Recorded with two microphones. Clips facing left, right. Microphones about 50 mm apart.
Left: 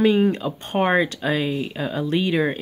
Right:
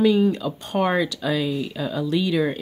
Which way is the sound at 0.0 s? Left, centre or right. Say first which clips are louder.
Even; left.